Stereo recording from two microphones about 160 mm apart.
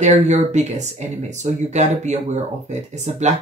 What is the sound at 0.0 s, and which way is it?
Speech, 45° right (ahead or behind).